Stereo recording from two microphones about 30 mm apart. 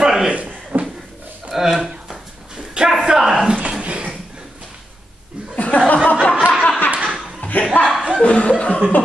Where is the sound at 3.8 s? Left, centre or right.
Right.